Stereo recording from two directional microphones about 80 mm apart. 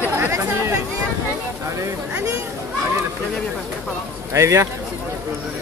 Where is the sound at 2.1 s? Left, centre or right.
Right.